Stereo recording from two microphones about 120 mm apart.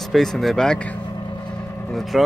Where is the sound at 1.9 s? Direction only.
Centre (ahead or behind).